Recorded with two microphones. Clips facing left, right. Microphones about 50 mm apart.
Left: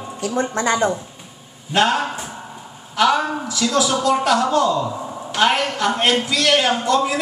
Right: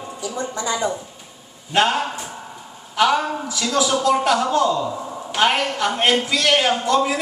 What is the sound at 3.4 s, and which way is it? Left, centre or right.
A woman's voice, centre.